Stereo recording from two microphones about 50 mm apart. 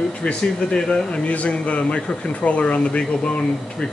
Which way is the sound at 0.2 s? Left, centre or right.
Centre.